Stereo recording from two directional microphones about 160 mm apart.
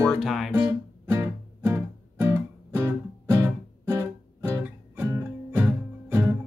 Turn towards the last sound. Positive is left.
turn(degrees=-15)  # may be behind; listen again after turning